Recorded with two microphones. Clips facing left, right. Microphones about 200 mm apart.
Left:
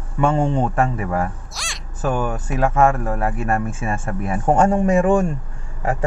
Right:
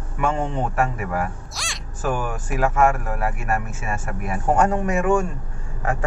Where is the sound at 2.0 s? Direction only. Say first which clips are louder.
Left 3 dB; 25° left (ahead or behind).